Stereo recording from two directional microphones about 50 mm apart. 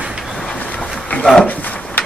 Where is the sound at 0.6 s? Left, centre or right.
Left.